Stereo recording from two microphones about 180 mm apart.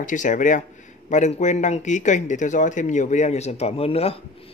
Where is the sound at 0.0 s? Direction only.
45° left (ahead or behind).